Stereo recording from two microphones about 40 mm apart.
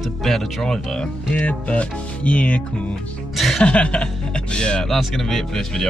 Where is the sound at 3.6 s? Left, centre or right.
Left.